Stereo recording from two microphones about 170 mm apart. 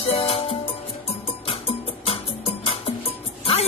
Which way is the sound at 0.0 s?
35° left (ahead or behind).